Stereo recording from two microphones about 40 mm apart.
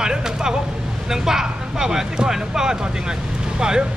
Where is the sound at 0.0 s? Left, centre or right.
Centre.